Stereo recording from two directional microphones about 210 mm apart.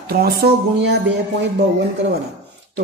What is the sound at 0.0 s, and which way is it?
Speech, 45° right (ahead or behind).